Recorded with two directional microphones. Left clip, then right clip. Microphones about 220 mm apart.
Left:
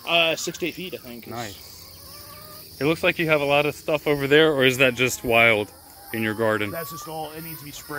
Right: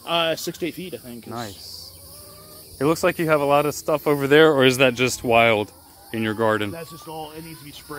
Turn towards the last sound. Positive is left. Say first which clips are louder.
# left 1 dB
turn(degrees=55)  # may be behind; listen again after turning